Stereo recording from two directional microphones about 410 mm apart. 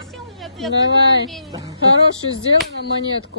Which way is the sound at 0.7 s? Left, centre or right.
Left.